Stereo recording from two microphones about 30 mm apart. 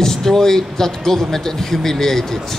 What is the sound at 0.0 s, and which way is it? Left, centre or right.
Speech, centre.